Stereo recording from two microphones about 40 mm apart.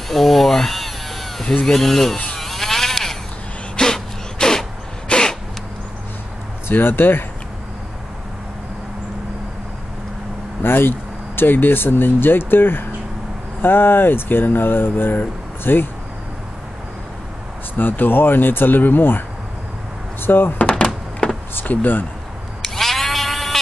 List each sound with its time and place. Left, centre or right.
0.1 s electric toothbrush: centre
1.4 s speech: left
1.7 s speech: centre
2.3 s vehicle: centre
3.7 s a sound: centre
5.0 s a sound: left
6.7 s speech: left
10.6 s speech: left
17.7 s speech: left
20.5 s a sound: left
21.5 s speech: left
22.6 s cat: centre